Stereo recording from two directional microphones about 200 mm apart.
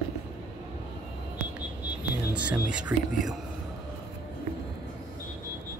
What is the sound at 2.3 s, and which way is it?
Speech, 5° right (ahead or behind).